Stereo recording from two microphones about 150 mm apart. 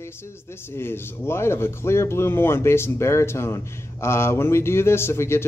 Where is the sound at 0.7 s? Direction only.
15° left (ahead or behind).